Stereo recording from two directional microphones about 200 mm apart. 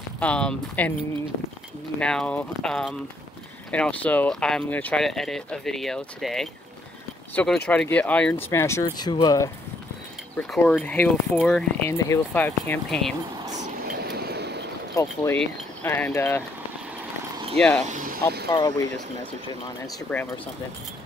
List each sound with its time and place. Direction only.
0.2 s speech: 5° left (ahead or behind)
2.0 s speech: 5° left (ahead or behind)
10.3 s speech: 5° left (ahead or behind)
13.9 s a sound: 50° right (ahead or behind)
15.0 s speech: 10° left (ahead or behind)
17.6 s speech: 5° left (ahead or behind)
17.8 s speech: 40° right (ahead or behind)
18.5 s speech: 20° left (ahead or behind)
20.1 s speech: 5° left (ahead or behind)